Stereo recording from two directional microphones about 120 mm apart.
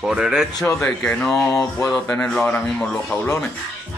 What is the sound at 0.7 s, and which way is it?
Speech, 10° left (ahead or behind).